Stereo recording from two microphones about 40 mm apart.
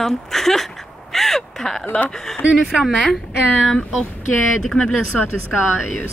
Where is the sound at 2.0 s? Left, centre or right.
Centre.